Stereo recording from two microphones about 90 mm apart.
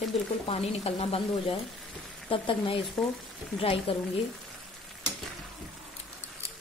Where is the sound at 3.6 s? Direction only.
90° left.